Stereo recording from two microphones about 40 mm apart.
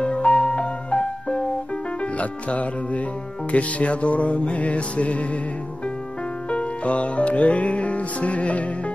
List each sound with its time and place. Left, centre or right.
0.0 s music: left
6.5 s music: left